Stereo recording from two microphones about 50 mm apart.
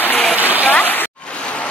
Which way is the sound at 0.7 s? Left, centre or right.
Left.